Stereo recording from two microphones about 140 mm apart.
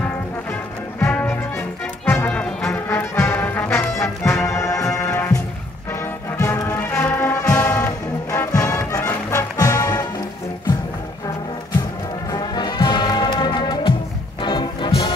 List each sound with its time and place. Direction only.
0.9 s music: 10° left (ahead or behind)
12.3 s music: 30° left (ahead or behind)